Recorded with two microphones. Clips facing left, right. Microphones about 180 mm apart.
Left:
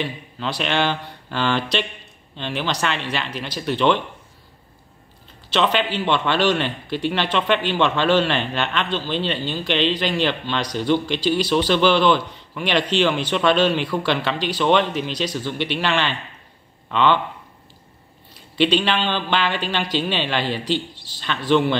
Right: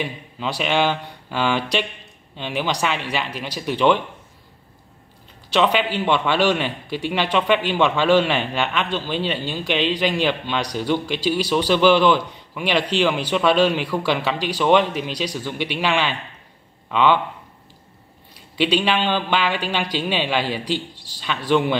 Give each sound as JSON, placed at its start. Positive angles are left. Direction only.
{"t": 0.0, "sound": "speech", "side_deg": -10}
{"t": 5.5, "sound": "speech", "side_deg": -10}
{"t": 18.6, "sound": "speech", "side_deg": -10}